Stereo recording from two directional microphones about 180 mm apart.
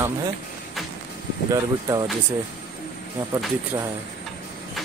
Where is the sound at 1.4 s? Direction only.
20° right (ahead or behind).